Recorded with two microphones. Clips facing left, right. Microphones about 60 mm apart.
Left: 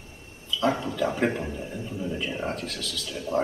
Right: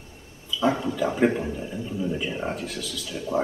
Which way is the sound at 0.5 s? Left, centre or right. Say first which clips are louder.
Right 2 dB; centre.